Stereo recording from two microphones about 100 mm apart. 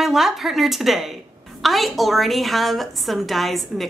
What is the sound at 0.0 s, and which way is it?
A woman's voice, 5° right (ahead or behind).